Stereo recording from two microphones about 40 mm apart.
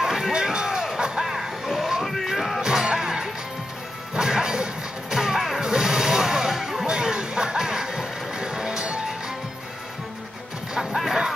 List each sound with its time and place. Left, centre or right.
0.0 s a sound: centre
0.3 s a sound: centre
0.8 s music: centre
2.6 s music: centre
4.1 s smash: centre
5.1 s music: centre
6.9 s music: centre
10.7 s music: centre